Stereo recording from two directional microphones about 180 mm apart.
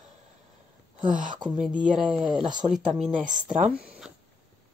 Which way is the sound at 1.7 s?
25° right (ahead or behind).